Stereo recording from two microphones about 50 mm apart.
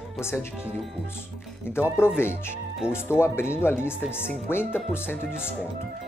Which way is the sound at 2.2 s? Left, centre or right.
Left.